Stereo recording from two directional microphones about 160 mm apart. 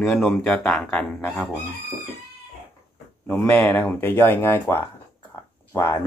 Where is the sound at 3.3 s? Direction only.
10° left (ahead or behind).